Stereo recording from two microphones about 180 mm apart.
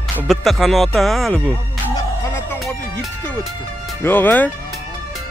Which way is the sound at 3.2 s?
5° left (ahead or behind).